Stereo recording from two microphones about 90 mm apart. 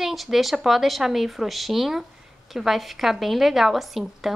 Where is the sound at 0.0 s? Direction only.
Centre (ahead or behind).